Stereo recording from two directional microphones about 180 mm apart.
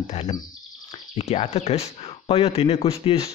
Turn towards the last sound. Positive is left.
turn(degrees=35)  # may be behind; listen again after turning